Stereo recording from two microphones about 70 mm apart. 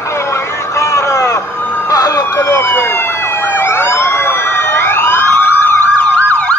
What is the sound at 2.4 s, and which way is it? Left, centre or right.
Emergency vehicle, left.